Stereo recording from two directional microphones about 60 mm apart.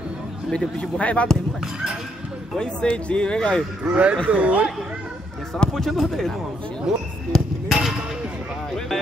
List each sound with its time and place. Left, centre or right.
0.5 s speech: centre
2.5 s speech: centre
3.8 s speech: right
5.7 s a man's voice: centre
7.3 s basketball bounce: centre
8.7 s a sound: centre